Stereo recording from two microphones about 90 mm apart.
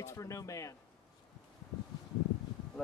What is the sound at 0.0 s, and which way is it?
Speech, 35° left (ahead or behind).